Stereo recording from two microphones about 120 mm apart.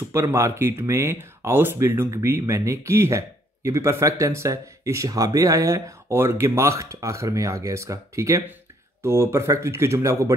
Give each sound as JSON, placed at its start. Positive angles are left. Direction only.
{"t": 0.1, "sound": "speech", "side_deg": -20}